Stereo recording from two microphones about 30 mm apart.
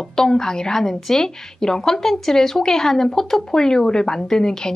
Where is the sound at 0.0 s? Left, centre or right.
Centre.